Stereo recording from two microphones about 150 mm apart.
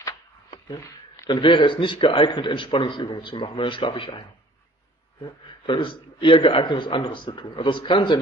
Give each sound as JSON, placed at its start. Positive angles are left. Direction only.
{"t": 0.7, "sound": "speech", "side_deg": 25}
{"t": 5.2, "sound": "speech", "side_deg": 35}